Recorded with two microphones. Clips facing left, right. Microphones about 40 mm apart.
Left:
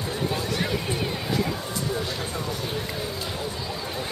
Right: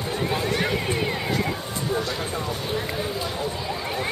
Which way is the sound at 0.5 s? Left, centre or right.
Right.